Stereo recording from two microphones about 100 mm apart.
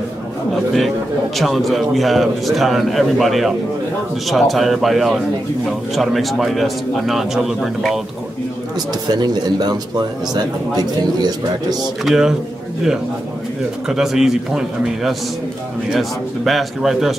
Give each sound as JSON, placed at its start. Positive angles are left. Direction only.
{"t": 0.7, "sound": "a man's voice", "side_deg": 0}
{"t": 9.0, "sound": "speech", "side_deg": -45}
{"t": 11.7, "sound": "a man's voice", "side_deg": -5}
{"t": 13.8, "sound": "a man's voice", "side_deg": -5}